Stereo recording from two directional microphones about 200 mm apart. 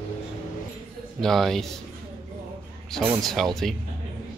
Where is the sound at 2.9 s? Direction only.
Centre (ahead or behind).